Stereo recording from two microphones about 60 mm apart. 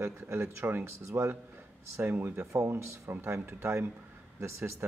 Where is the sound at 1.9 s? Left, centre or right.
Right.